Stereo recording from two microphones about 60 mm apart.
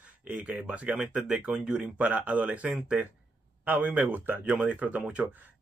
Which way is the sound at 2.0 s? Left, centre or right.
Right.